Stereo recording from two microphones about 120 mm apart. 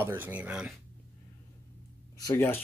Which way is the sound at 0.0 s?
20° right (ahead or behind).